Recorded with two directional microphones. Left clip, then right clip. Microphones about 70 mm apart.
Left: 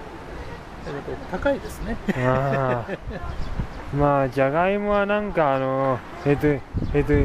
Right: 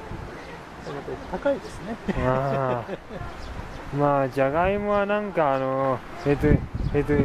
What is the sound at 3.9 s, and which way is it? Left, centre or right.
Speech, centre.